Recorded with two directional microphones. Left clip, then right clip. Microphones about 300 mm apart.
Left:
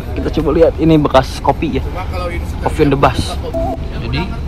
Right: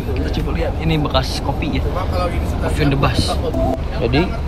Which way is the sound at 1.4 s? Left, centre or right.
Right.